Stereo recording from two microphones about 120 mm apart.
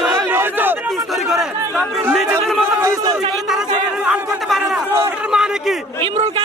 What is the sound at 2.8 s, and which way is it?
Speech, 25° right (ahead or behind).